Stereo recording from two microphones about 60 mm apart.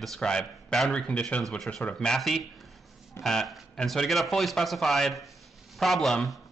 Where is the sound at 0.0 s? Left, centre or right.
Centre.